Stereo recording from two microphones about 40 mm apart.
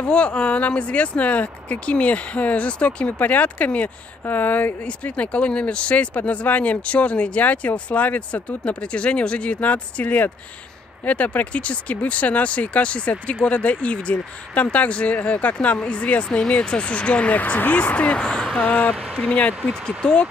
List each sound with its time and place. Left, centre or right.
0.0 s speech: left
4.3 s speech: left
4.8 s speech: left
18.1 s speech: centre
18.7 s speech: left
19.1 s speech: left
20.0 s speech: centre